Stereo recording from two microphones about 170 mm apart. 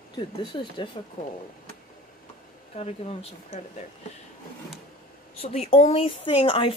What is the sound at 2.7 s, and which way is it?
Speech, 40° left (ahead or behind).